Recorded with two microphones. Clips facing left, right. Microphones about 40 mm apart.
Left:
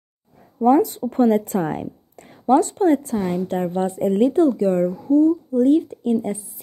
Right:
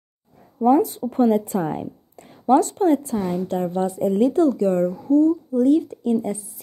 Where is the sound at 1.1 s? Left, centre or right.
Left.